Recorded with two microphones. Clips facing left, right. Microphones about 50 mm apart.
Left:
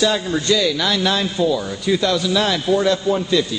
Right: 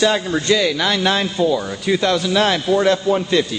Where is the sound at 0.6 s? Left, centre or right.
Right.